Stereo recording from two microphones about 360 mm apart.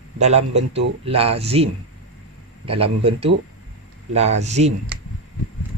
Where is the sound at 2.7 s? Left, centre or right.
Centre.